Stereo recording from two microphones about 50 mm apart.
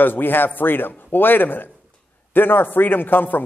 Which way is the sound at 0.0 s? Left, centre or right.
Left.